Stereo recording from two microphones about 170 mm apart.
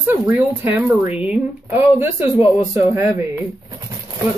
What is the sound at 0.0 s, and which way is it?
Speech, 10° right (ahead or behind).